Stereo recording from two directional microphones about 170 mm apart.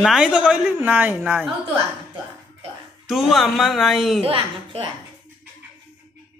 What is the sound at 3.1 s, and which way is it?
Speech, centre (ahead or behind).